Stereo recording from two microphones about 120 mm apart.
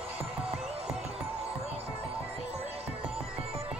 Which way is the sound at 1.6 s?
55° right (ahead or behind).